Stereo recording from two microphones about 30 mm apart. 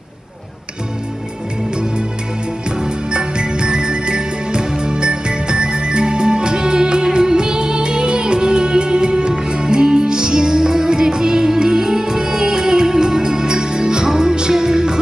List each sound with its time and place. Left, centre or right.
2.8 s music: right